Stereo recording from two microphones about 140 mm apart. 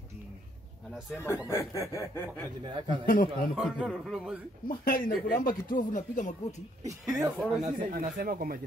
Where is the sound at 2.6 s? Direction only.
35° right (ahead or behind).